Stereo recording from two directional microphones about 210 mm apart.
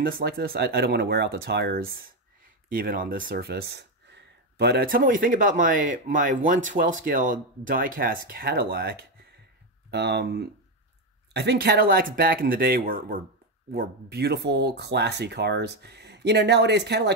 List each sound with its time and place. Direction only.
0.0 s speech: 50° right (ahead or behind)